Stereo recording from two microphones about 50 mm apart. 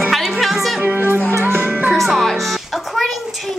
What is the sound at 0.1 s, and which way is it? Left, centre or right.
Music, centre.